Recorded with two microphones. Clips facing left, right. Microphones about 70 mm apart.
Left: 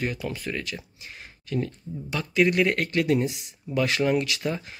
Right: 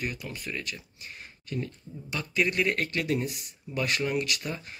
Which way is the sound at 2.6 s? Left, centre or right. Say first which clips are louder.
Left 5 dB; left.